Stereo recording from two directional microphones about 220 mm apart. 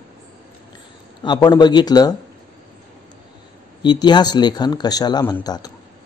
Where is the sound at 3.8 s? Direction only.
20° left (ahead or behind).